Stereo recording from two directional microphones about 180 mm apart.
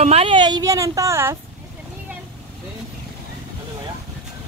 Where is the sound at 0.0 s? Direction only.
35° right (ahead or behind); by 1.4 s 15° right (ahead or behind).